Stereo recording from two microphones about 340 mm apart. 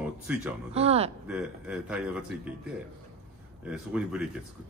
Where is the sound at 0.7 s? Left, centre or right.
Centre.